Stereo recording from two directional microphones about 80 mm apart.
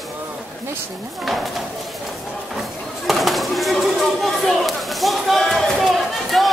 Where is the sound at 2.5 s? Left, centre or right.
Centre.